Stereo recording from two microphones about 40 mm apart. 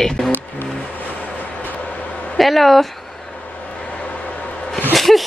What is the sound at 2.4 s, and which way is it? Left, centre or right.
Speech, centre.